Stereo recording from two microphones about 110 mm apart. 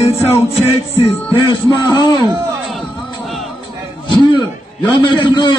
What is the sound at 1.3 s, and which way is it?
Speech, 30° left (ahead or behind).